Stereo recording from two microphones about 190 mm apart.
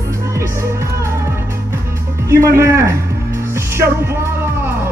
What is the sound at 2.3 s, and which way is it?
Speech, 15° right (ahead or behind).